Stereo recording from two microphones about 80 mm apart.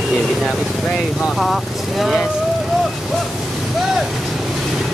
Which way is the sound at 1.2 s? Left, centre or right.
Centre.